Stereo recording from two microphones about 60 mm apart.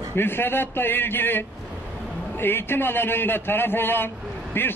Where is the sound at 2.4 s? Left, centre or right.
Left.